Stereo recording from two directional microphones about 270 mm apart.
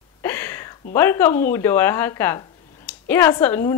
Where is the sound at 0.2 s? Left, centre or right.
Centre.